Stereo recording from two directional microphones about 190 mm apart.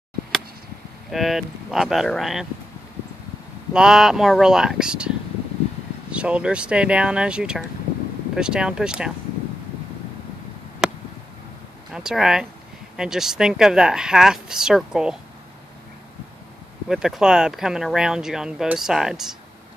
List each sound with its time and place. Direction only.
1.1 s speech: centre (ahead or behind)
3.7 s speech: 5° right (ahead or behind)
6.1 s speech: 5° right (ahead or behind)
10.8 s a sound: 5° right (ahead or behind)
11.9 s speech: 5° right (ahead or behind)
16.9 s speech: centre (ahead or behind)